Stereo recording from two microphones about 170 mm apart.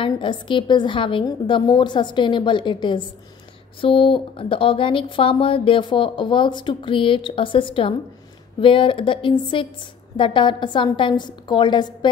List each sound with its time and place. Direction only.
0.0 s a woman's voice: 30° left (ahead or behind)